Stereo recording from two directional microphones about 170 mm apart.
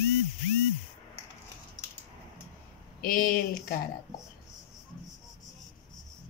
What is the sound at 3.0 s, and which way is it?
Speech, 55° left (ahead or behind).